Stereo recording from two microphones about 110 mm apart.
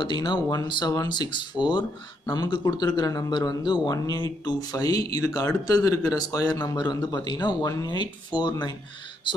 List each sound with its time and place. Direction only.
0.0 s speech: 45° left (ahead or behind)